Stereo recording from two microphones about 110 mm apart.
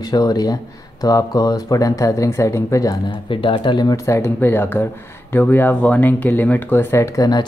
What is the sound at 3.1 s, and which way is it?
Speech, 50° left (ahead or behind).